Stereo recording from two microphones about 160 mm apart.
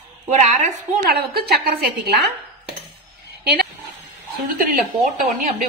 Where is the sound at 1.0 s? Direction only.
75° right (ahead or behind).